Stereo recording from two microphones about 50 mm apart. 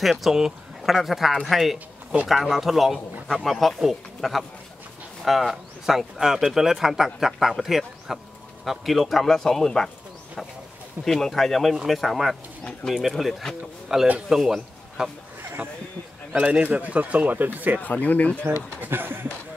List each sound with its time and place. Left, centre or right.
0.0 s a man's voice: centre
11.1 s a man's voice: centre
13.9 s a man's voice: centre
15.0 s speech: centre
16.3 s a man's voice: centre; by 17.7 s right
17.7 s speech: left
18.8 s speech: right